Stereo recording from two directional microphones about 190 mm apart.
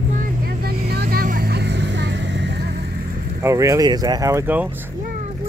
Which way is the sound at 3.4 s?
15° right (ahead or behind).